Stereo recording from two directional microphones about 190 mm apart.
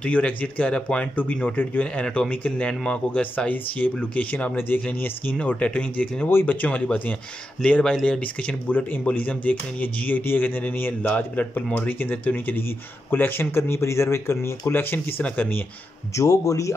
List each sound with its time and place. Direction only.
0.0 s speech: 5° left (ahead or behind)